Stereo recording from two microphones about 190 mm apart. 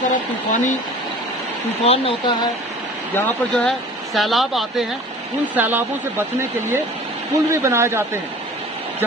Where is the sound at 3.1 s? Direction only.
5° left (ahead or behind); by 6.2 s 10° right (ahead or behind).